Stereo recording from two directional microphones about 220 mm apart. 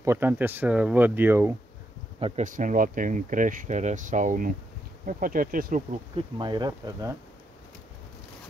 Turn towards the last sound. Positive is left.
turn(degrees=-20)  # may be behind; listen again after turning